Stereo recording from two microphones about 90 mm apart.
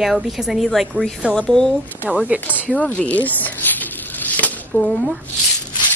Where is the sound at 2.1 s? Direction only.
15° right (ahead or behind).